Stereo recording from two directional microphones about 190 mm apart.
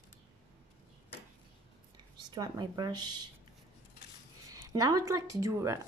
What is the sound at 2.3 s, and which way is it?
Speech, 20° right (ahead or behind).